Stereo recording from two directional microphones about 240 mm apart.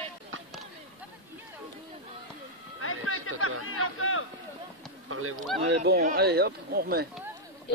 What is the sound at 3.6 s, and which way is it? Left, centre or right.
Chatter, left.